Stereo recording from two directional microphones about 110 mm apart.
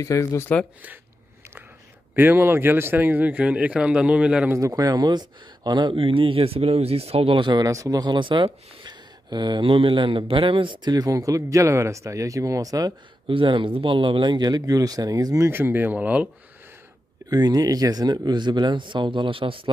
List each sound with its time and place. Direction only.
0.0 s speech: 30° left (ahead or behind)
2.1 s speech: 20° right (ahead or behind)
4.5 s speech: 30° right (ahead or behind); by 7.6 s 50° right (ahead or behind)
7.6 s speech: 30° right (ahead or behind)
13.3 s speech: 50° right (ahead or behind); by 16.3 s 15° right (ahead or behind)
17.3 s speech: 40° right (ahead or behind); by 19.7 s 55° right (ahead or behind)